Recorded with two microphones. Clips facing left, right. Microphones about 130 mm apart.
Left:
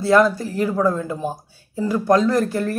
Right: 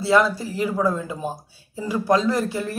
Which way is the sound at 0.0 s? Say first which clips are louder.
Left 3 dB; 5° right (ahead or behind).